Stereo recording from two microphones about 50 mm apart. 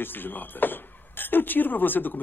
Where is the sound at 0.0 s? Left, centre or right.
Left.